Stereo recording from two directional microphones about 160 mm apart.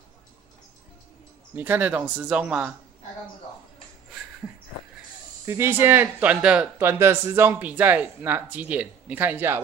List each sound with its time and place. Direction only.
1.5 s speech: 10° right (ahead or behind)
5.4 s speech: 15° right (ahead or behind)